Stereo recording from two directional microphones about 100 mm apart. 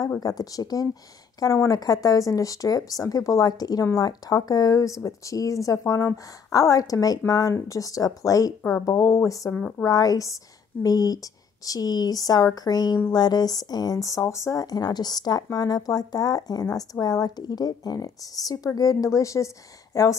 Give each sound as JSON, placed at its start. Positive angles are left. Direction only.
{"t": 0.2, "sound": "speech", "side_deg": 40}
{"t": 9.6, "sound": "a woman's voice", "side_deg": 10}
{"t": 9.8, "sound": "speech", "side_deg": 40}